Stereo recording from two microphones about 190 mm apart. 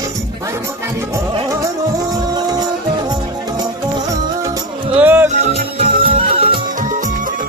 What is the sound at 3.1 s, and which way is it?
Music, 20° right (ahead or behind).